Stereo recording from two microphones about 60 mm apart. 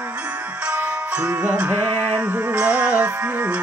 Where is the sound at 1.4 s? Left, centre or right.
Right.